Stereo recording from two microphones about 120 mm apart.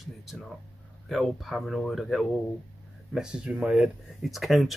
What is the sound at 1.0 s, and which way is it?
Speech, centre (ahead or behind).